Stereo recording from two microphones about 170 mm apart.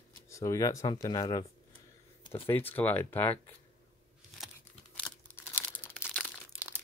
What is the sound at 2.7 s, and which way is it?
Speech, 10° left (ahead or behind).